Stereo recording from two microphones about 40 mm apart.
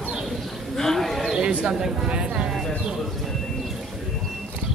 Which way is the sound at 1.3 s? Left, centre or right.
Right.